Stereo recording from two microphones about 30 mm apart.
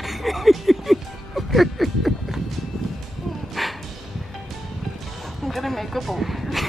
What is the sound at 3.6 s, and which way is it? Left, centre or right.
Dog, centre.